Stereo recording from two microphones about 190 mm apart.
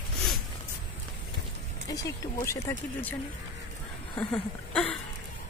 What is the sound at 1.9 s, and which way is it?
Speech, 15° left (ahead or behind).